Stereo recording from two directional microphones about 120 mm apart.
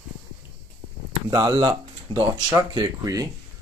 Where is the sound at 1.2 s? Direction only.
35° right (ahead or behind).